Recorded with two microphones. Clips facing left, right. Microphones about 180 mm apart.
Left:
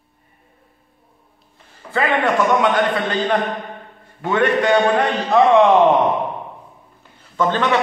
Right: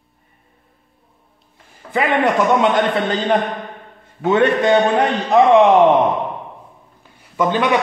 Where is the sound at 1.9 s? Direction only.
20° right (ahead or behind).